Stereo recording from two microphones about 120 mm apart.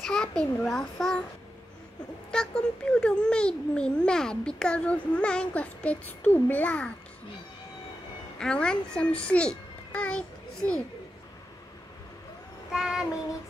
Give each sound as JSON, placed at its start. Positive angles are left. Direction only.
{"t": 0.0, "sound": "a child's voice", "side_deg": 5}
{"t": 2.3, "sound": "a child's voice", "side_deg": 10}
{"t": 8.4, "sound": "a child's voice", "side_deg": 5}
{"t": 12.7, "sound": "a child's voice", "side_deg": -5}